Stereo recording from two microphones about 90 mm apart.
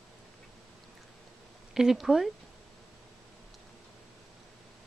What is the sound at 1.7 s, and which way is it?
Speech, 5° right (ahead or behind).